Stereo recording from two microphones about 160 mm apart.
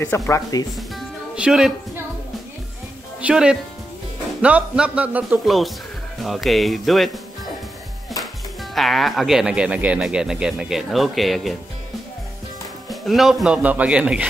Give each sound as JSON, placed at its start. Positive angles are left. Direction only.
{"t": 0.0, "sound": "speech", "side_deg": 15}
{"t": 0.7, "sound": "music", "side_deg": -5}
{"t": 3.2, "sound": "speech", "side_deg": -5}
{"t": 8.7, "sound": "speech", "side_deg": 0}
{"t": 13.0, "sound": "speech", "side_deg": 0}